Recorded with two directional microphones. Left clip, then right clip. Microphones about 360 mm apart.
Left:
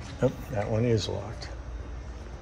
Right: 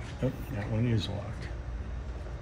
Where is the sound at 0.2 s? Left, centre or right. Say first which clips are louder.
Left 7 dB; centre.